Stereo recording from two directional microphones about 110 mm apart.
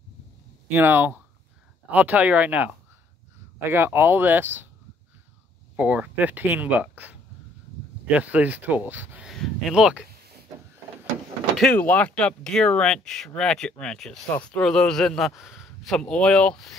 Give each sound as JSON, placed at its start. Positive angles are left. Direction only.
{"t": 0.7, "sound": "speech", "side_deg": -20}
{"t": 5.8, "sound": "speech", "side_deg": -15}
{"t": 9.3, "sound": "speech", "side_deg": 0}
{"t": 11.7, "sound": "a man's voice", "side_deg": 15}